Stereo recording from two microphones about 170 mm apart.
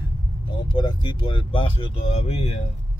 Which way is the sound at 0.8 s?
30° left (ahead or behind).